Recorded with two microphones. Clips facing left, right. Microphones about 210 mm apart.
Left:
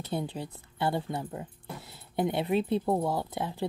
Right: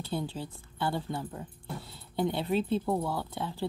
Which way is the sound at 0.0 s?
20° left (ahead or behind).